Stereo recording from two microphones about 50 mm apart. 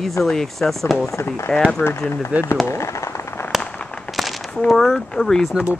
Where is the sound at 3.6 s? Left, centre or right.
Centre.